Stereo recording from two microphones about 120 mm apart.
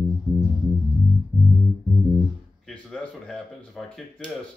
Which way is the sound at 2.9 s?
5° left (ahead or behind).